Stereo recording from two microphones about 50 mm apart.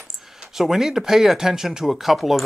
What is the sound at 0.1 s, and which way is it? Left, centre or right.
Speech, centre.